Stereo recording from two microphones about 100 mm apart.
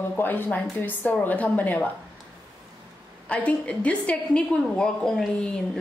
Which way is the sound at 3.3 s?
15° left (ahead or behind).